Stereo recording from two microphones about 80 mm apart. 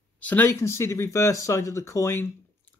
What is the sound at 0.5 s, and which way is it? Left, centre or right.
Speech, left.